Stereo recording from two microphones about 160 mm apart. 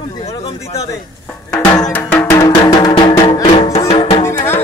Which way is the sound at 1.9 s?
10° left (ahead or behind).